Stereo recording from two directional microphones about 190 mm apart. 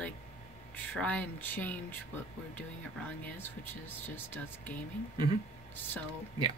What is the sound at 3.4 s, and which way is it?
A woman's voice, 10° left (ahead or behind).